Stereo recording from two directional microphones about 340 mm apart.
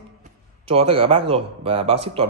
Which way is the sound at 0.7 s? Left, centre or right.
Centre.